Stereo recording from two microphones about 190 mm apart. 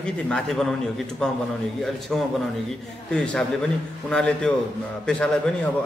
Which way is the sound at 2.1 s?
Centre (ahead or behind).